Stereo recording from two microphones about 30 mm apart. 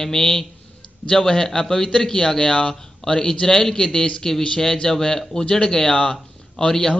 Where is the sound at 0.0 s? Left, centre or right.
Centre.